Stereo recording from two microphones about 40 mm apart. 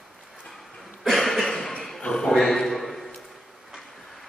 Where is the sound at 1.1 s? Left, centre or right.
Centre.